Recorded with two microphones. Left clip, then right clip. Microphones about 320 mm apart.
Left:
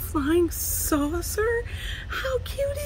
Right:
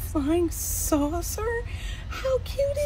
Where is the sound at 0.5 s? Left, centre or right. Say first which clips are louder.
Even; right.